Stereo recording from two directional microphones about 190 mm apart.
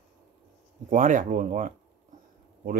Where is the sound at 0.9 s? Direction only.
45° right (ahead or behind).